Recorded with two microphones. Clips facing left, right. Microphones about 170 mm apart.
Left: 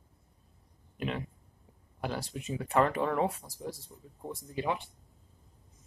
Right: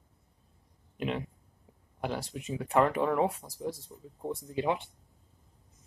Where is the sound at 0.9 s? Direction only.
20° right (ahead or behind).